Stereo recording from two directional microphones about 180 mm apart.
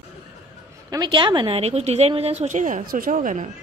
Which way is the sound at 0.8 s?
20° right (ahead or behind).